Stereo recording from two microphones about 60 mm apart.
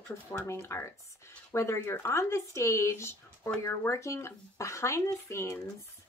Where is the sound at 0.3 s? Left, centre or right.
Left.